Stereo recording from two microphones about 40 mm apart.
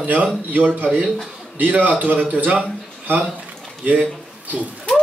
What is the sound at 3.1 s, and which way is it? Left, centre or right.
Speech, right.